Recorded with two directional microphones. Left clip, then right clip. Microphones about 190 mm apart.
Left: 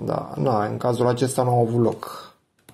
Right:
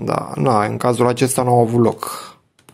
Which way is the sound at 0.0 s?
35° right (ahead or behind).